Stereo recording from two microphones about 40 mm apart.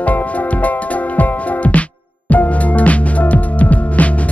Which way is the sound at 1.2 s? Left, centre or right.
Left.